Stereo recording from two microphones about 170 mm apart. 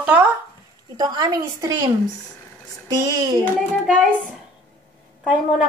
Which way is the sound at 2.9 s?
25° right (ahead or behind).